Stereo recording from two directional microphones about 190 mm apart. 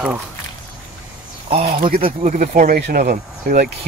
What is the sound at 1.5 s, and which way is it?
Speech, 30° right (ahead or behind).